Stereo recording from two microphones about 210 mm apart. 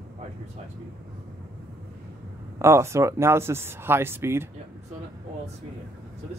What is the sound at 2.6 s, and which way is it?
Speech, 15° right (ahead or behind).